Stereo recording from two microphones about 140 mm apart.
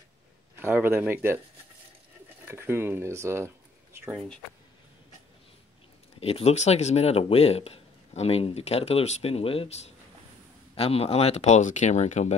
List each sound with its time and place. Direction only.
0.6 s speech: 15° right (ahead or behind)
2.4 s speech: 15° right (ahead or behind)
6.1 s speech: 45° left (ahead or behind)